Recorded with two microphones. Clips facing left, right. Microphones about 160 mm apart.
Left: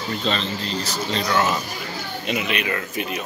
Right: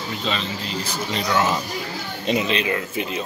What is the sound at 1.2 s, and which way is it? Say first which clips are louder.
Speech: right 1 dB; 25° right (ahead or behind).